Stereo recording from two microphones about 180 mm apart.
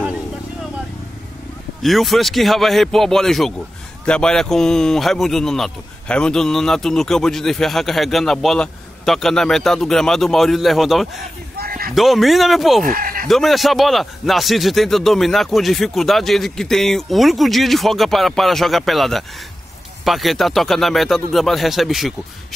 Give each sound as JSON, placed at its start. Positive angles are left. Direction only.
{"t": 1.8, "sound": "speech", "side_deg": 0}
{"t": 11.5, "sound": "a sound", "side_deg": -55}
{"t": 11.9, "sound": "speech", "side_deg": 0}
{"t": 12.8, "sound": "speech", "side_deg": -50}
{"t": 13.3, "sound": "speech", "side_deg": 0}